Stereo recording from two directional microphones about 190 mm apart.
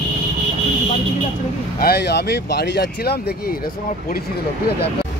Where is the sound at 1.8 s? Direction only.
55° left (ahead or behind).